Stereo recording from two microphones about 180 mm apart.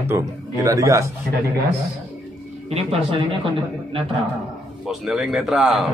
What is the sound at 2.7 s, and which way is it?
Speech, 35° right (ahead or behind).